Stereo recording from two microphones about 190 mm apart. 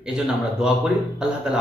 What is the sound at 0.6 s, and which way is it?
Speech, 5° right (ahead or behind).